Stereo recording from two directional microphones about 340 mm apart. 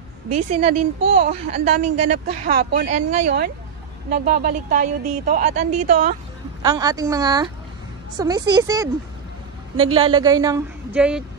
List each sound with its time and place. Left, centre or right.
0.6 s a woman's voice: centre
9.9 s a woman's voice: centre